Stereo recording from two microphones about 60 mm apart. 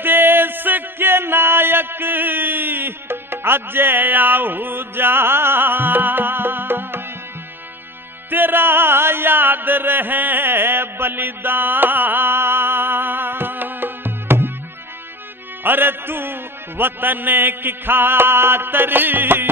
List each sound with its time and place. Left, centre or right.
0.0 s music: right
8.3 s music: right
15.6 s music: right